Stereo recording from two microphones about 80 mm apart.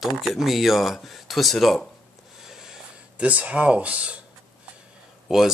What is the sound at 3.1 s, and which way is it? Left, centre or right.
Speech, centre.